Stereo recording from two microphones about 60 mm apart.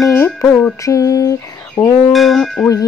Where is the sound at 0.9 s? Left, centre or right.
Left.